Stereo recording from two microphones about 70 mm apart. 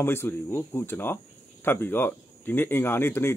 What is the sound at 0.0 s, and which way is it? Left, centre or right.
Speech, left.